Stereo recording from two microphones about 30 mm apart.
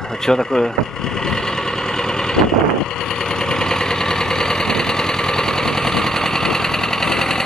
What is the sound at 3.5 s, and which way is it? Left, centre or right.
Engine, left.